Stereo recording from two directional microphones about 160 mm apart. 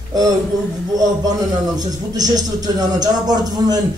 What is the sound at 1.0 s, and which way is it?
A man's voice, 25° right (ahead or behind).